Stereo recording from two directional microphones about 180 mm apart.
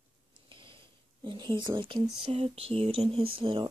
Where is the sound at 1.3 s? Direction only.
25° right (ahead or behind).